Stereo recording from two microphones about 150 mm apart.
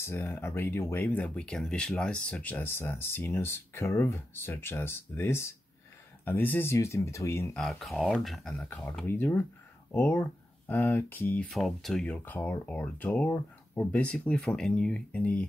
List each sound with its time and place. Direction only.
0.0 s speech: 15° left (ahead or behind)
7.5 s speech: 5° left (ahead or behind)
11.5 s speech: centre (ahead or behind)